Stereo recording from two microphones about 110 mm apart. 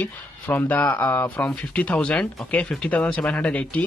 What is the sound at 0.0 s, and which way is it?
Speech, 15° left (ahead or behind).